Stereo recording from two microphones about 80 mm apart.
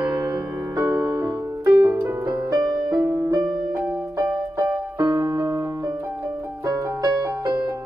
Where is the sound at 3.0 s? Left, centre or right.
Right.